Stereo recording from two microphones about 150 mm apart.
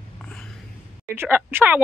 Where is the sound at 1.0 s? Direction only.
15° right (ahead or behind).